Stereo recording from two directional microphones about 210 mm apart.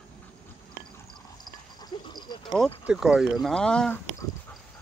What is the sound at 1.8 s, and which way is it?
Dog, 20° left (ahead or behind).